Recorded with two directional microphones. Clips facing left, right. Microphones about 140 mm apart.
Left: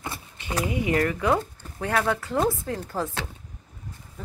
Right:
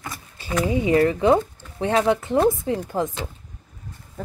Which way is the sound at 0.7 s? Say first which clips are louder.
Right 6 dB; 30° right (ahead or behind).